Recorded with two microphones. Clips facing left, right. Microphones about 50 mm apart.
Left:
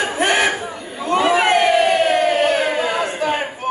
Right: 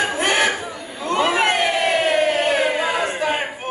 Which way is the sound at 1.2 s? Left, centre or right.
Centre.